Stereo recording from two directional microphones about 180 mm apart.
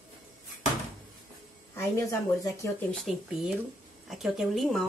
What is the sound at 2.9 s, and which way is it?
Speech, centre (ahead or behind).